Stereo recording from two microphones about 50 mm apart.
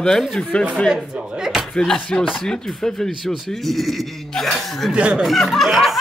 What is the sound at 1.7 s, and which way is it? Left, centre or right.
A man's voice, centre.